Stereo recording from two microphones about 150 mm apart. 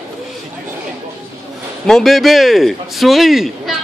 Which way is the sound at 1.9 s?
Centre (ahead or behind).